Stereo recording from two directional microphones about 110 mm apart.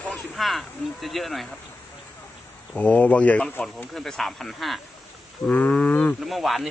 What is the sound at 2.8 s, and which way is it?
Speech, 10° left (ahead or behind).